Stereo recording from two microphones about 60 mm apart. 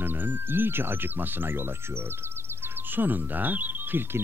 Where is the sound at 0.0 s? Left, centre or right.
Right.